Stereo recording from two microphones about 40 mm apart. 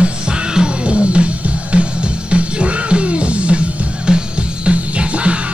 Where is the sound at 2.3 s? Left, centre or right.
Right.